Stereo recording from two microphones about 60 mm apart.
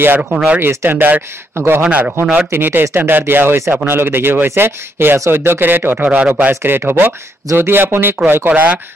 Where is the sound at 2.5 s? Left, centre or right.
Right.